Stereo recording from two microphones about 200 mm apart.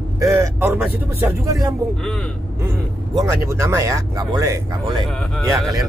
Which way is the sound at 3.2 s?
15° right (ahead or behind).